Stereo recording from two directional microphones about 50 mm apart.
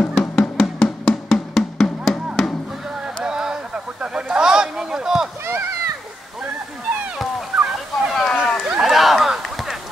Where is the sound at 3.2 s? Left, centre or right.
Centre.